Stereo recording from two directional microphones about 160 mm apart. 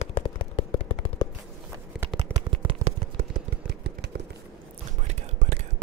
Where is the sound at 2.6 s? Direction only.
35° right (ahead or behind).